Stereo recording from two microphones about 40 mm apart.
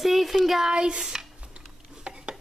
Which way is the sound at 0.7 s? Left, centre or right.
Right.